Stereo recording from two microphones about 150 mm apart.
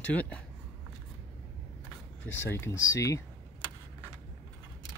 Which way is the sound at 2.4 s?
15° left (ahead or behind).